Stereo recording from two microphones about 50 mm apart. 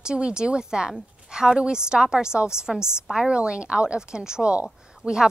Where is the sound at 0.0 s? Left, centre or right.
Centre.